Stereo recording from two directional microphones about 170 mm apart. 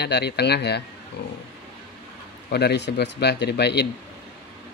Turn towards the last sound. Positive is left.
turn(degrees=75)  # may be behind; listen again after turning